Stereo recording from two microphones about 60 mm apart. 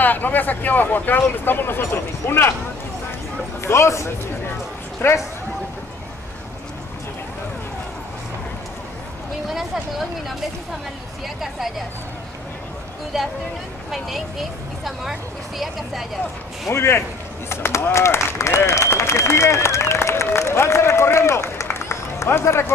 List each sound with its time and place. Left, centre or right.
0.0 s speech: left
3.6 s speech: left
5.0 s speech: left
9.5 s speech: centre
13.9 s speech: centre
16.7 s speech: left
18.7 s speech: left